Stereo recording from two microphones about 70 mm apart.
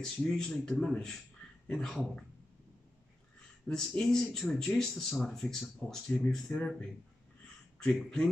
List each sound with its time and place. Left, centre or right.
0.0 s speech: centre
3.6 s speech: centre
6.5 s speech: left
7.8 s speech: centre